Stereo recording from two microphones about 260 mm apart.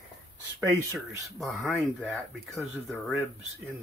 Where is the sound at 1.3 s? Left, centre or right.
Centre.